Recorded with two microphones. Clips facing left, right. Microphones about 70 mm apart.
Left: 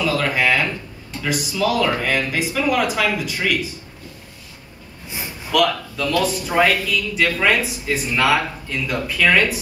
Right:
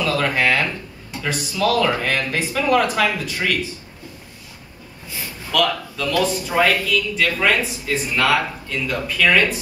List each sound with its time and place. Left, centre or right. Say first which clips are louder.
0.0 s a sound: even; centre
2.0 s speech: left 1 dB; centre
5.0 s a sound: left 1 dB; left
5.7 s speech: left 1 dB; centre
6.4 s speech: left 1 dB; centre
6.9 s speech: even; centre